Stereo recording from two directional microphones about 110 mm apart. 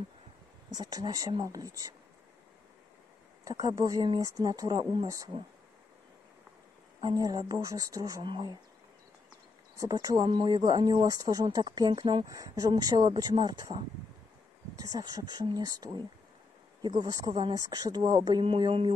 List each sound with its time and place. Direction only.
0.7 s speech: 40° right (ahead or behind)
3.4 s speech: 30° right (ahead or behind)
7.0 s speech: 35° right (ahead or behind)
8.3 s speech: 45° right (ahead or behind)
9.8 s speech: 35° right (ahead or behind)
14.8 s speech: 35° right (ahead or behind)